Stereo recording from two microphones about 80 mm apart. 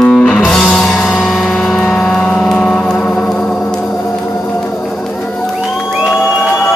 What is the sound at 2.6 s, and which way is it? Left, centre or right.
Music, centre.